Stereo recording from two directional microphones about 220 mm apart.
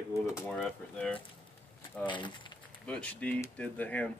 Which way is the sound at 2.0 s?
20° left (ahead or behind).